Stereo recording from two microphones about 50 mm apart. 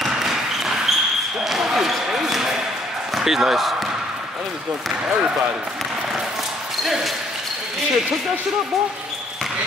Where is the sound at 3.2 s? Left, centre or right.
Centre.